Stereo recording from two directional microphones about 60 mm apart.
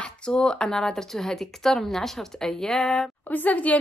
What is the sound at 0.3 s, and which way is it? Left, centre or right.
Speech, centre.